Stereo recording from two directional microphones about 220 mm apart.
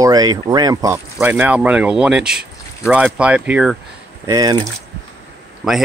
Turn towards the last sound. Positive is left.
turn(degrees=-5)  # may be behind; listen again after turning